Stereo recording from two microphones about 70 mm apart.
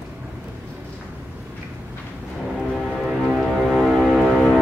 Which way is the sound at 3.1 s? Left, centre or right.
Centre.